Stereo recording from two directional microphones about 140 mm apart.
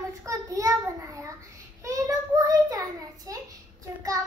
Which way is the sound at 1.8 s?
20° right (ahead or behind).